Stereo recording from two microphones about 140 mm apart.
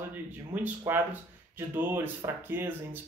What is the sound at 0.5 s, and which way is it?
Speech, 10° right (ahead or behind).